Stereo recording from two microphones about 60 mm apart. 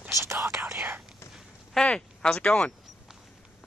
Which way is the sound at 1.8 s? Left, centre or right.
Centre.